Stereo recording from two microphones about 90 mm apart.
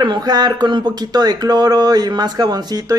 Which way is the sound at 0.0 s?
50° right (ahead or behind).